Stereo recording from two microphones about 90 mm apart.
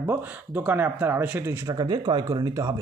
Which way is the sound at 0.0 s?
25° right (ahead or behind).